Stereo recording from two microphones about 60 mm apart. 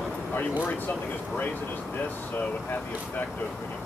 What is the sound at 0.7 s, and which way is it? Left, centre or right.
Speech, left.